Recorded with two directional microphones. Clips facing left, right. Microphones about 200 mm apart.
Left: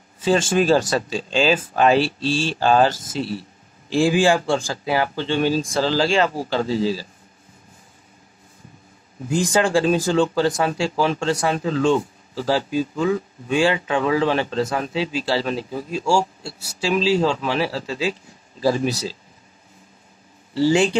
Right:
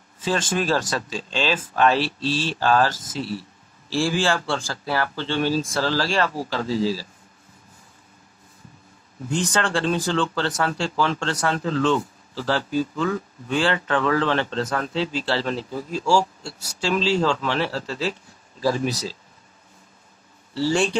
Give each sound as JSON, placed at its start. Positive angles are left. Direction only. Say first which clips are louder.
{"t": 0.2, "sound": "speech", "louder": "left 6 dB", "side_deg": 30}
{"t": 2.6, "sound": "speech", "louder": "left 3 dB", "side_deg": 25}
{"t": 9.3, "sound": "speech", "louder": "left 5 dB", "side_deg": 10}
{"t": 18.6, "sound": "speech", "louder": "left 3 dB", "side_deg": 30}
{"t": 20.5, "sound": "speech", "louder": "left 5 dB", "side_deg": 20}